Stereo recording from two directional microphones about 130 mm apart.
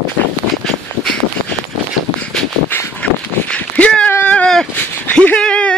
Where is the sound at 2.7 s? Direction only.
15° left (ahead or behind).